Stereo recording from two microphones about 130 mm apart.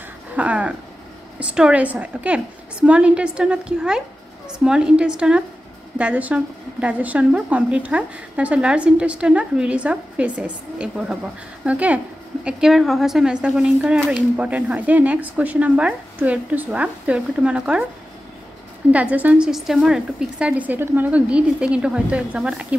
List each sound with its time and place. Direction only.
0.4 s a woman's voice: 10° right (ahead or behind)
18.9 s speech: 10° right (ahead or behind)